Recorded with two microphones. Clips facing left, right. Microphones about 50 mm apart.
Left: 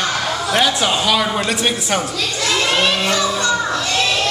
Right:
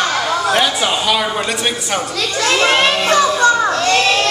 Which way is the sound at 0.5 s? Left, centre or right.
Centre.